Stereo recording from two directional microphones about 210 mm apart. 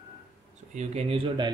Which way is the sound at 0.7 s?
30° right (ahead or behind).